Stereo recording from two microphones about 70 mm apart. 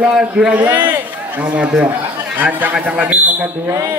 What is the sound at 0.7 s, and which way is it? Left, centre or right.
A man's voice, right.